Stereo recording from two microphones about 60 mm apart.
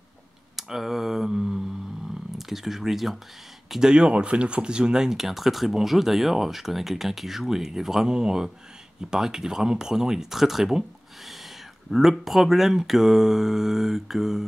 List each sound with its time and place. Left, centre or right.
0.6 s a sound: centre
2.3 s speech: centre
11.9 s speech: centre